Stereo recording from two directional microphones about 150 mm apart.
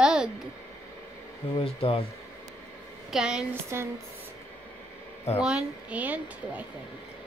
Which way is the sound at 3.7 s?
15° right (ahead or behind).